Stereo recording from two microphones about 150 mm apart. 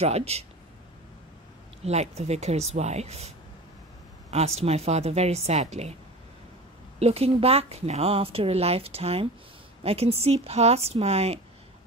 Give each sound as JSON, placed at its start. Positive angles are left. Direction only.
{"t": 0.0, "sound": "a woman's voice", "side_deg": -45}
{"t": 1.9, "sound": "a woman's voice", "side_deg": -45}
{"t": 7.0, "sound": "a woman's voice", "side_deg": -40}